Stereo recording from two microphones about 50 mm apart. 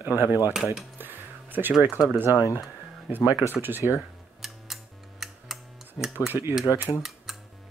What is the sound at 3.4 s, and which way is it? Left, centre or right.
Speech, right.